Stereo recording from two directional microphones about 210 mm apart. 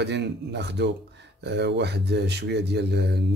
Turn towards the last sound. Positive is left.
turn(degrees=-50)  # may be behind; listen again after turning